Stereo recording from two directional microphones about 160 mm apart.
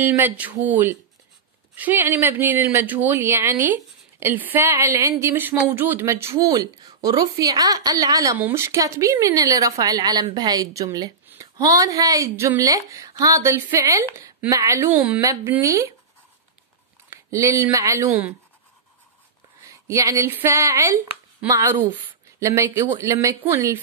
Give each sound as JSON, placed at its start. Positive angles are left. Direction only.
{"t": 0.0, "sound": "speech", "side_deg": -15}
{"t": 17.1, "sound": "speech", "side_deg": -20}
{"t": 19.6, "sound": "speech", "side_deg": -20}